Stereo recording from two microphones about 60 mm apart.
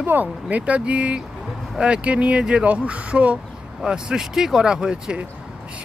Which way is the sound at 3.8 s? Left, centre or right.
Centre.